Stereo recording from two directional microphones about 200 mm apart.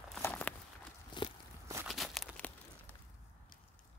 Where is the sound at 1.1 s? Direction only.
25° left (ahead or behind).